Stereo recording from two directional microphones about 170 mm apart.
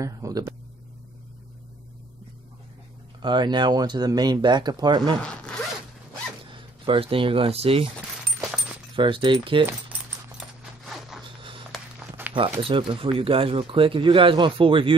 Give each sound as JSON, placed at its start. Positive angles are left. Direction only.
{"t": 0.0, "sound": "speech", "side_deg": -20}
{"t": 3.2, "sound": "speech", "side_deg": -25}
{"t": 5.2, "sound": "zipper", "side_deg": 5}
{"t": 6.9, "sound": "speech", "side_deg": -30}
{"t": 8.9, "sound": "speech", "side_deg": -30}
{"t": 10.6, "sound": "dog", "side_deg": 0}
{"t": 11.7, "sound": "a sound", "side_deg": -10}
{"t": 12.6, "sound": "speech", "side_deg": -30}